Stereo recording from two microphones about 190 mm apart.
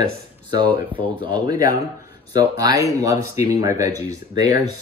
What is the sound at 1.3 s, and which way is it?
Speech, 20° right (ahead or behind).